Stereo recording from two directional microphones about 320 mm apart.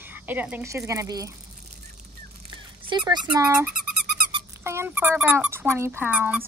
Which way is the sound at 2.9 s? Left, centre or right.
Centre.